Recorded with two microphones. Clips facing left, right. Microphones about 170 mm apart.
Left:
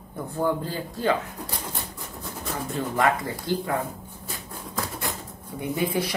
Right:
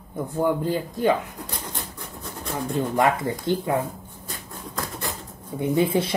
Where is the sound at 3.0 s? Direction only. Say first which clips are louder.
Right 1 dB; 20° right (ahead or behind).